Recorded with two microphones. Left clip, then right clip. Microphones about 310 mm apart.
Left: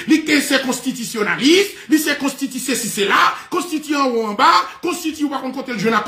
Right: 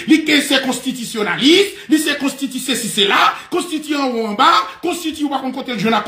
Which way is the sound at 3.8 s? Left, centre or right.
Centre.